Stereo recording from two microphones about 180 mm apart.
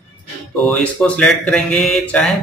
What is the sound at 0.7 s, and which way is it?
Speech, 5° left (ahead or behind).